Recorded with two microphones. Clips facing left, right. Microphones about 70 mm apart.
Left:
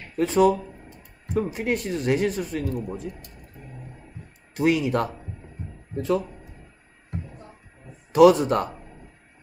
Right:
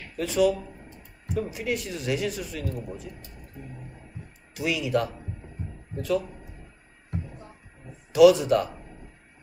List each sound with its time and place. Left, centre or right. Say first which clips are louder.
0.2 s speech: left 4 dB; left
4.6 s speech: left 4 dB; left
8.1 s speech: left 1 dB; left